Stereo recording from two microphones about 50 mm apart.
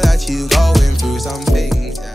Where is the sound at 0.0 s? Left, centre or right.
Centre.